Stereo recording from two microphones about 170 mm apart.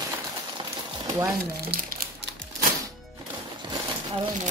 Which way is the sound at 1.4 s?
65° right (ahead or behind).